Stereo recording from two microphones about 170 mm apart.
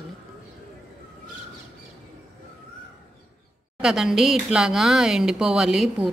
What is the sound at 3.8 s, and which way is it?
Speech, centre (ahead or behind).